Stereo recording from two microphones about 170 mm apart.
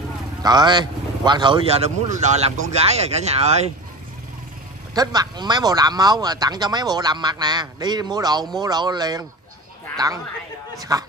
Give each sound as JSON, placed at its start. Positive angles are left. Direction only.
{"t": 0.4, "sound": "speech", "side_deg": -25}
{"t": 2.4, "sound": "speech", "side_deg": -40}
{"t": 4.9, "sound": "a woman's voice", "side_deg": -25}